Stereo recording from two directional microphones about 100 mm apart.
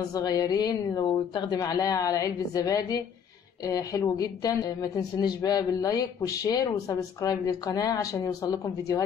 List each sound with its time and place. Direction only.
0.1 s a woman's voice: 40° left (ahead or behind)